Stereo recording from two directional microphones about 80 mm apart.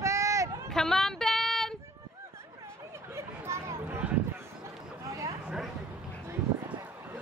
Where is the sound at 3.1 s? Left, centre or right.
Right.